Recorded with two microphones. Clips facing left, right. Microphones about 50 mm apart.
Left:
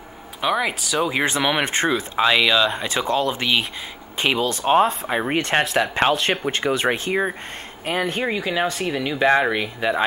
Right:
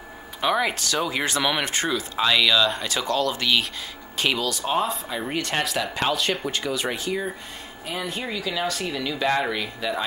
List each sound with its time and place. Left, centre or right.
0.4 s speech: centre; by 10.0 s left